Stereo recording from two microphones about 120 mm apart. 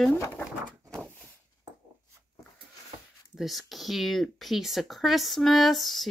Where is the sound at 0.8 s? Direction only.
5° left (ahead or behind).